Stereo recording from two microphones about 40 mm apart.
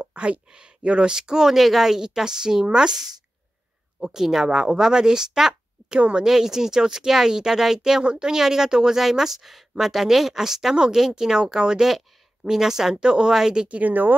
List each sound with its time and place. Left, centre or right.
0.0 s speech: right
6.2 s speech: centre
13.7 s a woman's voice: right